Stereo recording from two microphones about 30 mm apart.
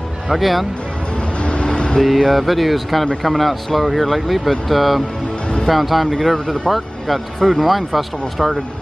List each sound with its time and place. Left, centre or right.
0.3 s speech: centre
1.4 s vehicle: left
2.0 s speech: centre
6.1 s speech: centre
7.3 s speech: centre